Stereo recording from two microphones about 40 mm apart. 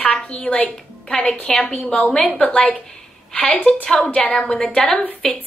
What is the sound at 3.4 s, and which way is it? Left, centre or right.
A woman's voice, left.